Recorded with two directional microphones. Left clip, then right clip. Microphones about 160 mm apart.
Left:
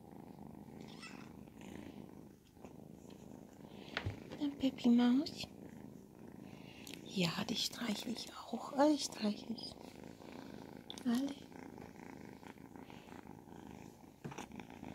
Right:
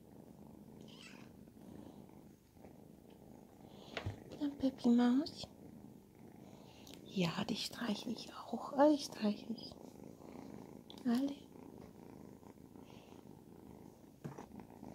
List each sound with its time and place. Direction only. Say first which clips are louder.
4.4 s a woman's voice: even; centre (ahead or behind)
7.1 s speech: left 1 dB; centre (ahead or behind)
11.0 s speech: right 1 dB; 10° right (ahead or behind)
14.3 s purr: left 6 dB; 15° left (ahead or behind)